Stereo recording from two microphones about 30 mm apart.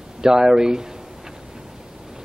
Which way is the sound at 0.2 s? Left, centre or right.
Right.